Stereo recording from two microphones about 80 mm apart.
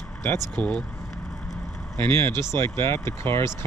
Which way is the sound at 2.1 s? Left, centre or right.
Left.